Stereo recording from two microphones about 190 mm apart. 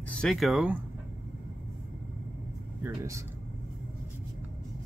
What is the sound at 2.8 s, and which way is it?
Speech, 15° right (ahead or behind).